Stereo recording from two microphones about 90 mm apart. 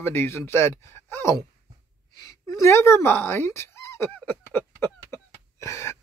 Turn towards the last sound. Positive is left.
turn(degrees=30)  # may be behind; listen again after turning